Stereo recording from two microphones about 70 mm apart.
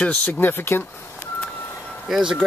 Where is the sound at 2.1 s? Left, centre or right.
Centre.